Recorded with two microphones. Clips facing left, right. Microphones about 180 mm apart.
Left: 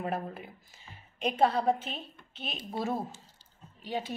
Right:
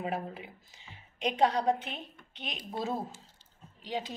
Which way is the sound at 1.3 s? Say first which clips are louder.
Left 1 dB; 15° right (ahead or behind).